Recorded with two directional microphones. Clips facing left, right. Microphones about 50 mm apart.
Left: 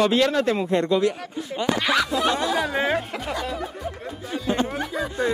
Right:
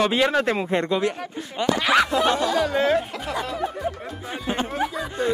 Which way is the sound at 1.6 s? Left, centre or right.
Right.